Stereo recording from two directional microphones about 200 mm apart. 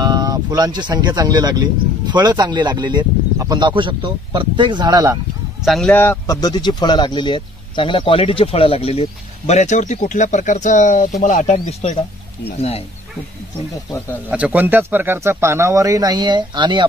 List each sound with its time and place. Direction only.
0.0 s speech: 20° right (ahead or behind)
5.7 s speech: 5° left (ahead or behind); by 11.7 s 40° left (ahead or behind)
14.3 s speech: 10° right (ahead or behind)